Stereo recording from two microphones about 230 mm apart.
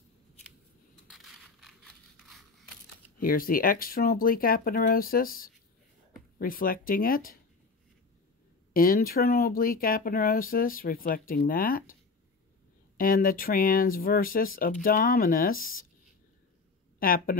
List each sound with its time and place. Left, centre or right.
1.0 s a sound: centre
3.2 s speech: left
8.7 s speech: left
17.0 s speech: left